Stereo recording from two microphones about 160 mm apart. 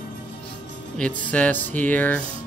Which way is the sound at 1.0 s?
10° left (ahead or behind).